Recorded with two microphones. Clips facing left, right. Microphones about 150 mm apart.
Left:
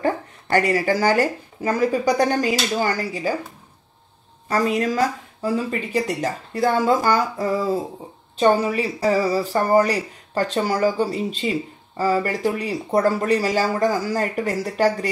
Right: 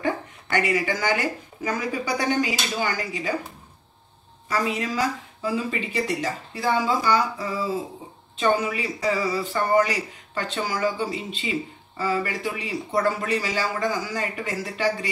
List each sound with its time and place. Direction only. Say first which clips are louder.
0.0 s speech: left 4 dB; 40° left (ahead or behind)
4.5 s speech: left 5 dB; 40° left (ahead or behind)
8.4 s speech: left 5 dB; 35° left (ahead or behind)